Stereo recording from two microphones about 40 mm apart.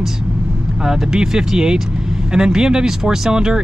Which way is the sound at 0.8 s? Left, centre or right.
Centre.